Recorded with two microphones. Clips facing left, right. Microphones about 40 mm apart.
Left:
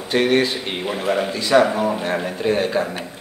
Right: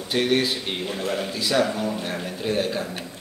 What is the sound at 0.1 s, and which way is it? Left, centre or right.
A man's voice, centre.